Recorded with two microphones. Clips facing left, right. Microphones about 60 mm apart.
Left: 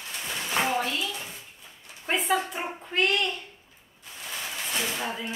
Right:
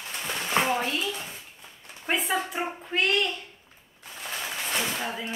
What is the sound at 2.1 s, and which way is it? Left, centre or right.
A woman's voice, centre.